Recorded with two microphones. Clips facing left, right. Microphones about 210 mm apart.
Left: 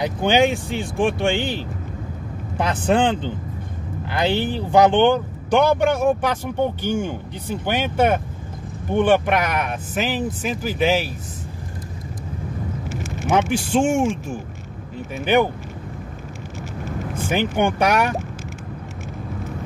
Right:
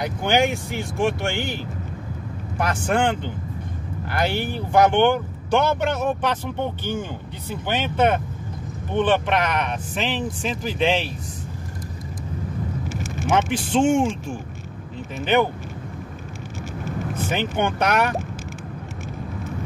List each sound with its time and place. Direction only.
0.0 s speech: 20° left (ahead or behind)
2.5 s speech: 20° left (ahead or behind)
13.3 s speech: 10° left (ahead or behind)
17.3 s speech: 10° left (ahead or behind)